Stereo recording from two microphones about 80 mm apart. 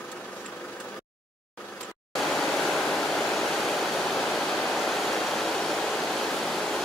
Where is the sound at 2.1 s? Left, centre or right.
Centre.